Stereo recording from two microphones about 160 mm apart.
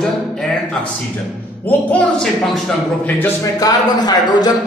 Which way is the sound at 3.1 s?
20° left (ahead or behind).